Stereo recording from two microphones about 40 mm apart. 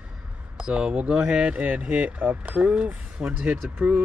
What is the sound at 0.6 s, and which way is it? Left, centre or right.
Speech, centre.